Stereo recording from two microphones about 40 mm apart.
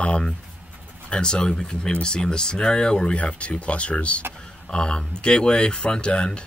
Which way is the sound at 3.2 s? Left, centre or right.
Left.